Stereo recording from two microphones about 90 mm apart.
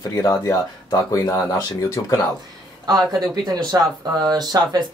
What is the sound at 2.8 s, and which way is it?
Speech, 45° right (ahead or behind).